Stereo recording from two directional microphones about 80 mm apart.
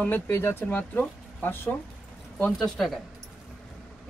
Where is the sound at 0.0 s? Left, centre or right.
Left.